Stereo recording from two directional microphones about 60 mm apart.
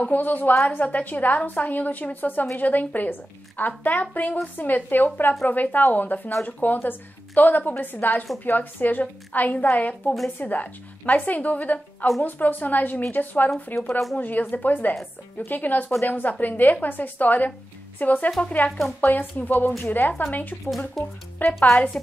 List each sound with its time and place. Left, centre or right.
0.1 s a woman's voice: left
13.7 s speech: left
14.1 s a woman's voice: left
21.0 s speech: centre
21.4 s a woman's voice: left